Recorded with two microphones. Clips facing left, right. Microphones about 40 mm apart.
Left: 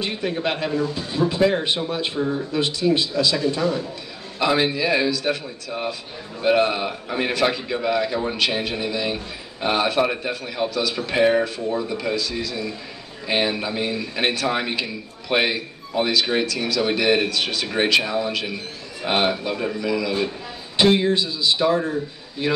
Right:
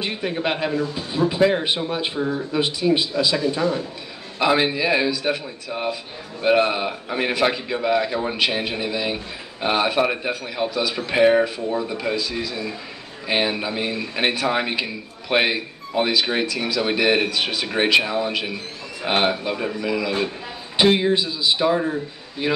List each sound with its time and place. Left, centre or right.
0.0 s speech: centre